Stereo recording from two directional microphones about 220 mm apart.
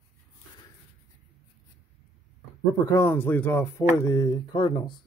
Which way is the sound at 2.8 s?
10° left (ahead or behind).